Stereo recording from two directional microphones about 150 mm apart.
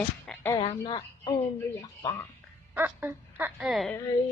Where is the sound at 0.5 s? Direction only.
35° left (ahead or behind).